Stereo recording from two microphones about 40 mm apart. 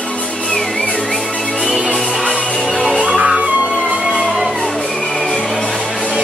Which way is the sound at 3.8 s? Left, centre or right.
Centre.